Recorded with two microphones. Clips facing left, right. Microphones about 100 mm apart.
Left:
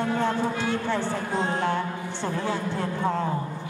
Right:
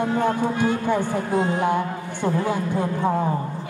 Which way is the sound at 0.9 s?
15° right (ahead or behind).